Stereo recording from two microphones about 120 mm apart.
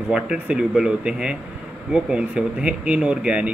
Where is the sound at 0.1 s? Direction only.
5° right (ahead or behind).